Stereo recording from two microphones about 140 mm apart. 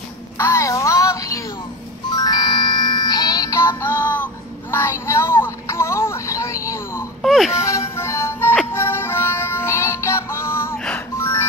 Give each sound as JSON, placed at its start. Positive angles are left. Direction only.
{"t": 0.4, "sound": "child singing", "side_deg": 20}
{"t": 2.1, "sound": "music", "side_deg": 30}
{"t": 4.0, "sound": "a sound", "side_deg": 10}
{"t": 7.2, "sound": "music", "side_deg": 0}
{"t": 7.5, "sound": "music", "side_deg": 20}